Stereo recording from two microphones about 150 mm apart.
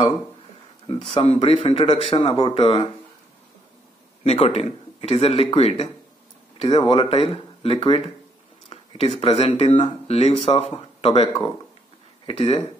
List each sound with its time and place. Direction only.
0.8 s speech: 40° left (ahead or behind)
4.2 s speech: 45° left (ahead or behind)
12.3 s speech: 40° left (ahead or behind)